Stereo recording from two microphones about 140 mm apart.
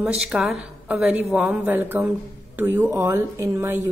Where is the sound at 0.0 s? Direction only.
5° right (ahead or behind).